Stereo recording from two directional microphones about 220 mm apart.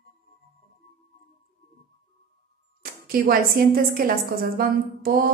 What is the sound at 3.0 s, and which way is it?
A woman's voice, 40° right (ahead or behind).